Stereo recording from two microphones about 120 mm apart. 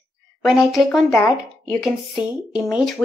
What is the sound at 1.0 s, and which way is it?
Speech, 25° left (ahead or behind).